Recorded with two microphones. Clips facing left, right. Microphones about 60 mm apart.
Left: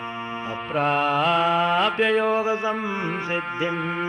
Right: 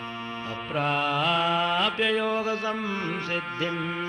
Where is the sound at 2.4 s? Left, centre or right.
Centre.